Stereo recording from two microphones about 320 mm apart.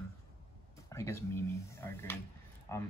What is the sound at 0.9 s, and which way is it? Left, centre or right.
Speech, centre.